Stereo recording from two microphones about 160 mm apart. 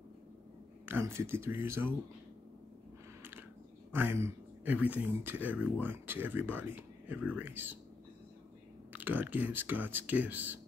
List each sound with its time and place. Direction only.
0.8 s speech: 15° right (ahead or behind)
3.2 s a sound: 10° right (ahead or behind)
3.9 s speech: 15° right (ahead or behind)
8.9 s speech: 10° right (ahead or behind)